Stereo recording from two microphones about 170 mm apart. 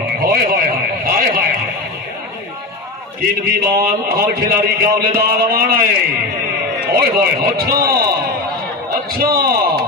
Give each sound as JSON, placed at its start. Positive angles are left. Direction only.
{"t": 0.2, "sound": "radio", "side_deg": -60}
{"t": 3.2, "sound": "a man's voice", "side_deg": -60}
{"t": 9.1, "sound": "a man's voice", "side_deg": -60}